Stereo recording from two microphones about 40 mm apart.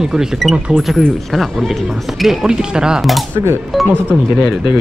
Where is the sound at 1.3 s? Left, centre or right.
Centre.